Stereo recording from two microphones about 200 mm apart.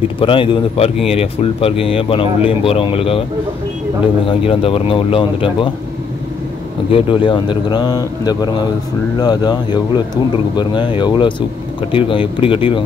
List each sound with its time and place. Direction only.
0.2 s speech: 25° left (ahead or behind)
4.3 s speech: 30° left (ahead or behind)
6.9 s speech: 25° left (ahead or behind)